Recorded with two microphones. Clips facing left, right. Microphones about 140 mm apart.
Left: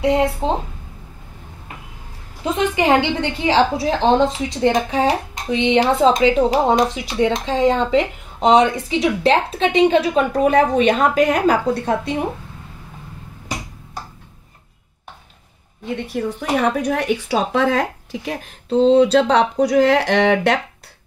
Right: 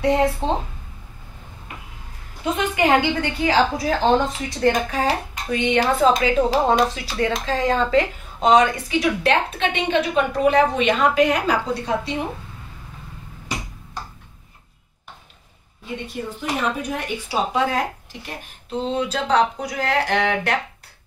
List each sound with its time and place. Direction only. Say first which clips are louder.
0.0 s speech: left 2 dB; 15° left (ahead or behind)
2.4 s a woman's voice: left 2 dB; 30° left (ahead or behind); by 12.2 s 50° left (ahead or behind)
15.8 s speech: left 6 dB; 65° left (ahead or behind); by 20.5 s 90° left